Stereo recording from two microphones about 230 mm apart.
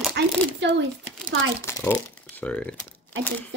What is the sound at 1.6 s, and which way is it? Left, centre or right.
Speech, centre.